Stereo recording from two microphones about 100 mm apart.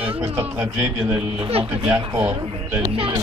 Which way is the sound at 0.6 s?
25° right (ahead or behind).